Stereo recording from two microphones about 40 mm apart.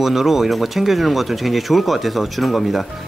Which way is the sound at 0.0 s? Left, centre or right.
Centre.